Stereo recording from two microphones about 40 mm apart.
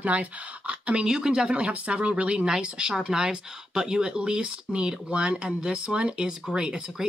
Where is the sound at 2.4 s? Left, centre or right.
Centre.